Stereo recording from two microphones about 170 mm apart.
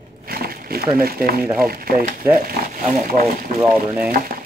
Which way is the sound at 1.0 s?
60° right (ahead or behind).